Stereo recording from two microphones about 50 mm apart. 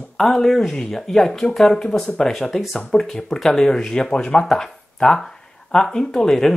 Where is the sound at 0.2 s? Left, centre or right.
Centre.